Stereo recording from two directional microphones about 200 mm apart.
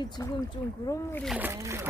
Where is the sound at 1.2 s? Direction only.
10° right (ahead or behind).